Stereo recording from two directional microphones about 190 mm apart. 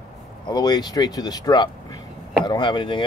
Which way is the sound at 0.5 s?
20° left (ahead or behind).